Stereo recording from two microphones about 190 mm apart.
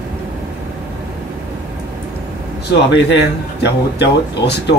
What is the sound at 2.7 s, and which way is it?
Speech, 65° left (ahead or behind).